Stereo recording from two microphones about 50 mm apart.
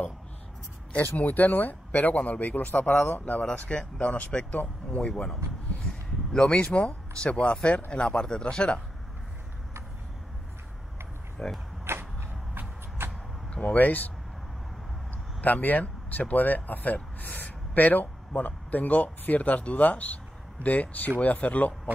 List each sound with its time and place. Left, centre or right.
1.1 s speech: left; by 8.8 s centre
11.4 s speech: centre
11.8 s a sound: right
12.5 s vehicle: right
13.7 s speech: left
15.4 s speech: left